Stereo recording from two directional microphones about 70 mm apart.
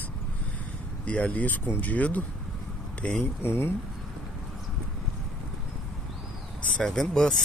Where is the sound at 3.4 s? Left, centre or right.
Left.